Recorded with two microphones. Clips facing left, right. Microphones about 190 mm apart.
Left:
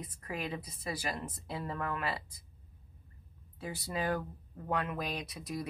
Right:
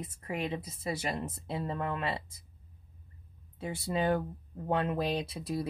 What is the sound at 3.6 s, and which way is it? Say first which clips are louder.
Speech: right 5 dB; 25° right (ahead or behind).